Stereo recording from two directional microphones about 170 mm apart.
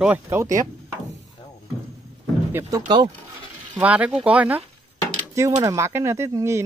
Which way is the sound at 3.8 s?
10° right (ahead or behind).